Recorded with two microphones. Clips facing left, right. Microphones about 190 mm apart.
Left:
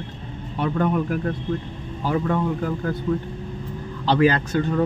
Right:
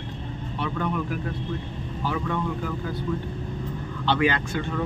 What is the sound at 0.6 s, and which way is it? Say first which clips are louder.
Speech: left 6 dB; 45° left (ahead or behind).